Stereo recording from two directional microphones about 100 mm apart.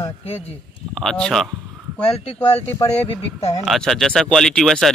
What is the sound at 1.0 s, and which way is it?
Speech, 5° left (ahead or behind).